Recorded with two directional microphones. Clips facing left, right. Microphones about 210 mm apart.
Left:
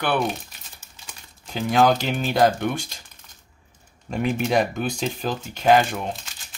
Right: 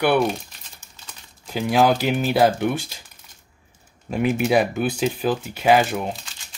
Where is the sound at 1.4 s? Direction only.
5° right (ahead or behind).